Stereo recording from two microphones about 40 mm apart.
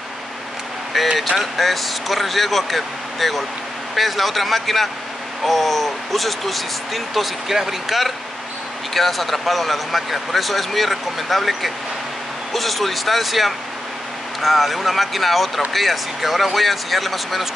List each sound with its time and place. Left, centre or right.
0.9 s speech: centre